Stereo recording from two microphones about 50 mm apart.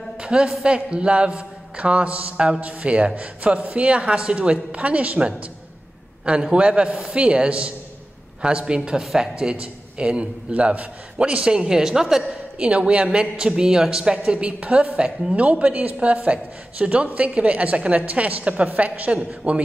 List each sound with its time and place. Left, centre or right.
0.2 s a woman's voice: centre
12.5 s a woman's voice: right